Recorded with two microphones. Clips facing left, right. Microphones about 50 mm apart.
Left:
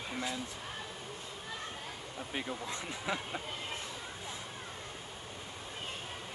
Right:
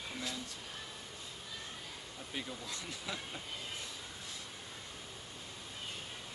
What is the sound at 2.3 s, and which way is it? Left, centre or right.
Speech, left.